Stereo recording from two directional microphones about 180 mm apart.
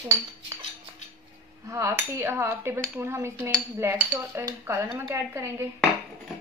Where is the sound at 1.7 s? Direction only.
15° right (ahead or behind).